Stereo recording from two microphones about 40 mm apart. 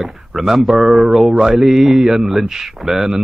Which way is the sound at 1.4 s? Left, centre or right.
Centre.